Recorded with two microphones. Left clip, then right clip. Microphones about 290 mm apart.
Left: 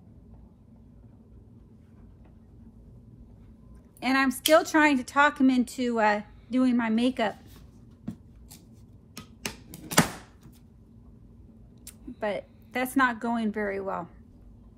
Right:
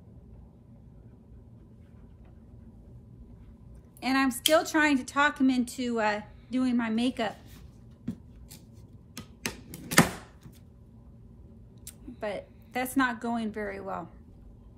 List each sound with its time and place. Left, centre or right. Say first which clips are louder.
4.0 s a woman's voice: left 2 dB; left
9.1 s typewriter: right 1 dB; centre
11.8 s a sound: left 4 dB; left